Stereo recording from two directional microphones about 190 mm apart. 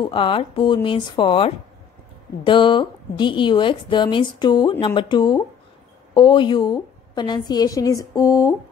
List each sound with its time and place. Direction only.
0.0 s a woman's voice: 25° left (ahead or behind)